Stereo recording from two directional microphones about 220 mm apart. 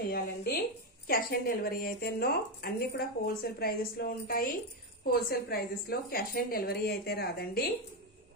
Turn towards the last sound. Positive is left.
turn(degrees=45)  # may be behind; listen again after turning